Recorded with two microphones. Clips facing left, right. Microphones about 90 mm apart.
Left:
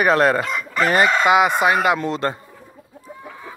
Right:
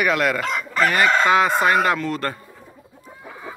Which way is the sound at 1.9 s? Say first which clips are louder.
Left 2 dB; 25° left (ahead or behind).